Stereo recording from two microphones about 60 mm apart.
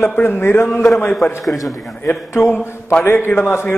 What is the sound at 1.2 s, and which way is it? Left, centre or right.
Speech, centre.